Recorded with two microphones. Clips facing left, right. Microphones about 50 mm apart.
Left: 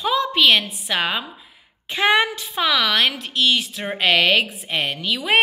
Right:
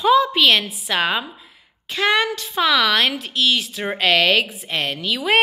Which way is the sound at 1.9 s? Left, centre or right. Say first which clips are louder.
Left 1 dB; centre.